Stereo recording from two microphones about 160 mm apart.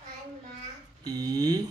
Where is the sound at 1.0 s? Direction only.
25° right (ahead or behind).